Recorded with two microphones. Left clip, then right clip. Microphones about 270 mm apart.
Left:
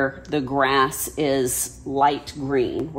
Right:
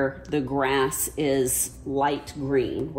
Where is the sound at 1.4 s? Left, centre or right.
Centre.